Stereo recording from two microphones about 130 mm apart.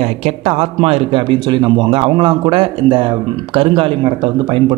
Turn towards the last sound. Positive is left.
turn(degrees=-40)  # may be behind; listen again after turning